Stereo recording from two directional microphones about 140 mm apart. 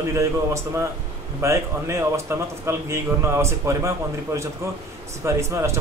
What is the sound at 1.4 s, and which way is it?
A man's voice, 20° right (ahead or behind).